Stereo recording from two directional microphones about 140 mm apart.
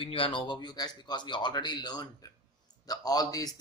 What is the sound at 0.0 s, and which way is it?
A man's voice, 40° left (ahead or behind).